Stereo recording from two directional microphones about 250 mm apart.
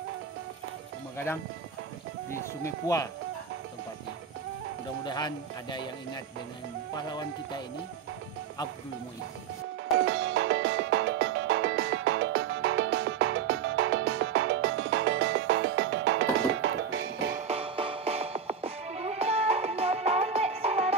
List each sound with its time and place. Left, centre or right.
1.1 s speech: centre
2.6 s speech: centre
5.0 s speech: centre
7.0 s speech: centre
10.0 s music: right
17.4 s music: right